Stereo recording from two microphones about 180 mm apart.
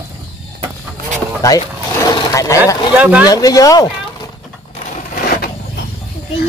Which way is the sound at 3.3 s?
20° left (ahead or behind).